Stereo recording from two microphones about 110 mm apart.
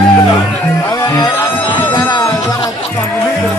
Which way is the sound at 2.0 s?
35° left (ahead or behind).